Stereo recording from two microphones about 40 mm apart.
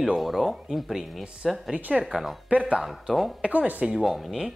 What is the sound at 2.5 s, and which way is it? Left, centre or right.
Speech, right.